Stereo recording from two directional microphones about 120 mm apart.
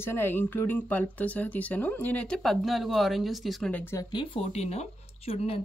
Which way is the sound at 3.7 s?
20° left (ahead or behind).